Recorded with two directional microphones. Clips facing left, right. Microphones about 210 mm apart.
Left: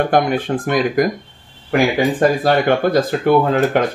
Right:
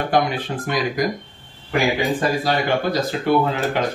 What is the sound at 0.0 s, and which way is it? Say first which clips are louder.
Speech: left 4 dB; 50° left (ahead or behind).